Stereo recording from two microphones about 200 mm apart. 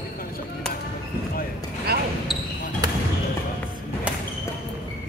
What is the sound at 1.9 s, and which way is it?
Basketball bounce, 50° right (ahead or behind).